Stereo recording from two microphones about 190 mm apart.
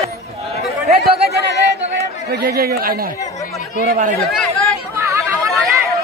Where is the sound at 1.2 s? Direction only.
60° right (ahead or behind).